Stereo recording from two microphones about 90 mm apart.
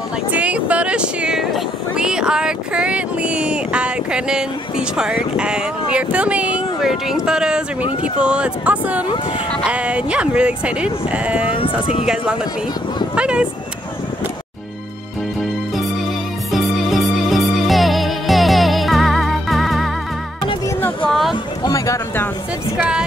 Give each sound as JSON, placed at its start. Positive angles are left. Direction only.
{"t": 0.3, "sound": "vehicle", "side_deg": -15}
{"t": 2.0, "sound": "speech", "side_deg": -10}
{"t": 13.1, "sound": "a sound", "side_deg": -10}
{"t": 16.5, "sound": "music", "side_deg": 0}
{"t": 21.7, "sound": "a sound", "side_deg": 40}
{"t": 22.8, "sound": "speech", "side_deg": -10}